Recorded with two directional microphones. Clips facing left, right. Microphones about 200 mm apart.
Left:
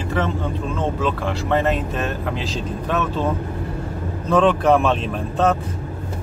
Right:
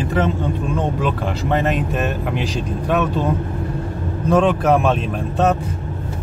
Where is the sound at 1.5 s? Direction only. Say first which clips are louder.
Right 1 dB; 15° right (ahead or behind).